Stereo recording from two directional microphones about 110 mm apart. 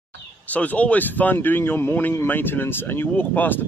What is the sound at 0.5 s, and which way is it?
Speech, 15° left (ahead or behind).